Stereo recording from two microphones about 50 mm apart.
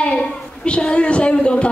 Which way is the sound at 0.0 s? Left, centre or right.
Left.